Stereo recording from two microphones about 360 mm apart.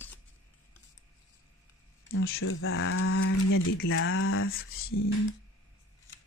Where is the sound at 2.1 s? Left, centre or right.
Left.